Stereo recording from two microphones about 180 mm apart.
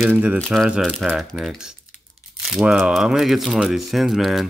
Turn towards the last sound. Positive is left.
turn(degrees=0)  # may be behind; listen again after turning